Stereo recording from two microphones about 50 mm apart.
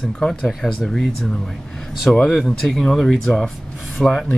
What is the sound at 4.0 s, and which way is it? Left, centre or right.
Rub, centre.